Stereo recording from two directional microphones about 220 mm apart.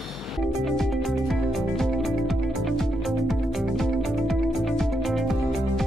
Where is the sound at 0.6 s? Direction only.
Centre (ahead or behind).